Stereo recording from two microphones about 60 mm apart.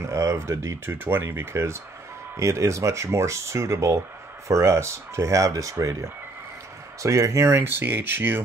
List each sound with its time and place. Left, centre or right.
0.0 s a sound: right
0.4 s speech: right
5.8 s speech: right